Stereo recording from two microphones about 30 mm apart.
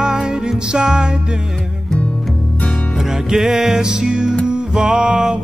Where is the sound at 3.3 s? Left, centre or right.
Centre.